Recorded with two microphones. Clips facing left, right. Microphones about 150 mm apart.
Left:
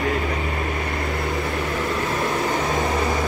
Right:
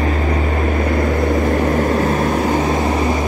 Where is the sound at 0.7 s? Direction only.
45° right (ahead or behind).